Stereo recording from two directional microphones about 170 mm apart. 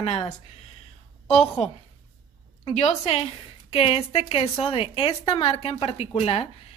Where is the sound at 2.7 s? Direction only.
40° left (ahead or behind).